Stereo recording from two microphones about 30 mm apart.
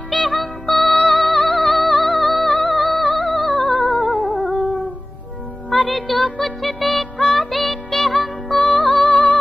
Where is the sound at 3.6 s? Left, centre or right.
Left.